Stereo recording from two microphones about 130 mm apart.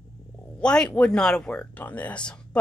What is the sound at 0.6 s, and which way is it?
Speech, 5° left (ahead or behind).